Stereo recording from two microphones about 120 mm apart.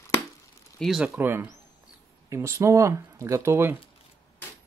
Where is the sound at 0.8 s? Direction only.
Centre (ahead or behind).